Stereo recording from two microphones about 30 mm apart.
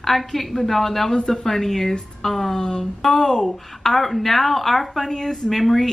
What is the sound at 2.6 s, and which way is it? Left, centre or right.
Speech, left.